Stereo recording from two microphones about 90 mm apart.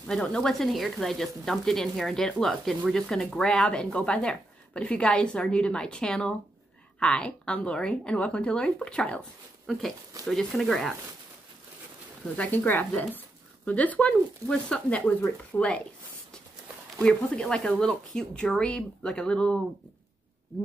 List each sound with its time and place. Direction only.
0.0 s speech: 5° left (ahead or behind)
12.4 s speech: 20° left (ahead or behind)
17.0 s speech: 10° left (ahead or behind)